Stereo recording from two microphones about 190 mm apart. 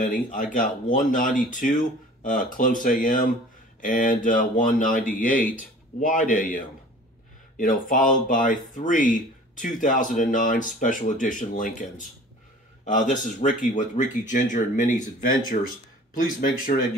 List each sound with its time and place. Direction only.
0.0 s speech: 45° left (ahead or behind)